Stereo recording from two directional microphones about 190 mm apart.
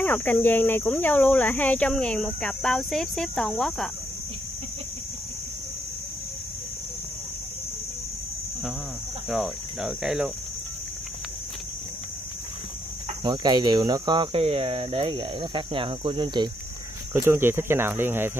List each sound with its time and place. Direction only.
0.0 s speech: 10° left (ahead or behind)
9.3 s speech: centre (ahead or behind)
13.2 s cricket: 20° right (ahead or behind)
17.1 s speech: 10° right (ahead or behind)